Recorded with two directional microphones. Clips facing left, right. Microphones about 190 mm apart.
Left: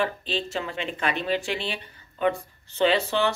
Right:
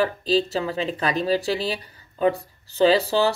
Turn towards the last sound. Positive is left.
turn(degrees=-35)  # may be behind; listen again after turning